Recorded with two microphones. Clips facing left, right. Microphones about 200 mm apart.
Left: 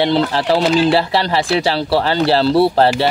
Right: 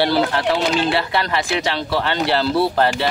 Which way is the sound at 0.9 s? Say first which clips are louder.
Left 5 dB; 30° left (ahead or behind).